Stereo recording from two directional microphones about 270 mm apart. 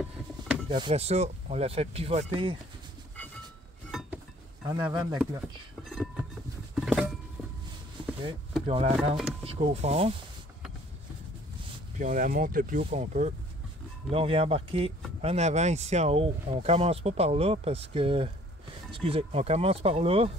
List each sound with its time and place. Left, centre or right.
0.7 s speech: centre
3.9 s a sound: centre
4.6 s a man's voice: centre
5.9 s a sound: centre
8.6 s speech: right
12.0 s speech: right